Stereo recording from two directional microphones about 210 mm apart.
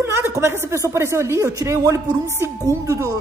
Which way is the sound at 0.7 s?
15° right (ahead or behind).